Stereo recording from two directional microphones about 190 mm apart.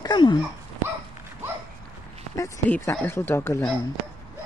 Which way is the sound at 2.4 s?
10° left (ahead or behind).